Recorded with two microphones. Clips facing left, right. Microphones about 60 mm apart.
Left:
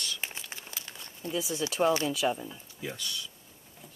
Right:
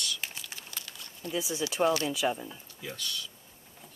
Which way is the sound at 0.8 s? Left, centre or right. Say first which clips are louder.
Left 1 dB; left.